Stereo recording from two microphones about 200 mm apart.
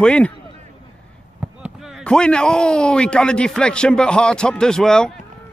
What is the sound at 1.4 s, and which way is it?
Speech, 5° right (ahead or behind).